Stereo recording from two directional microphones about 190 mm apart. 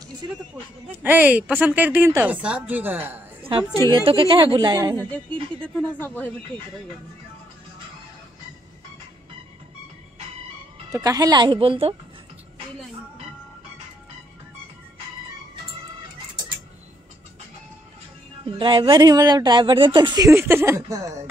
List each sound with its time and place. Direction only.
1.0 s speech: 10° right (ahead or behind)
3.9 s speech: 25° right (ahead or behind)
5.1 s speech: 5° left (ahead or behind)
10.9 s speech: 20° right (ahead or behind)
18.4 s speech: 25° right (ahead or behind)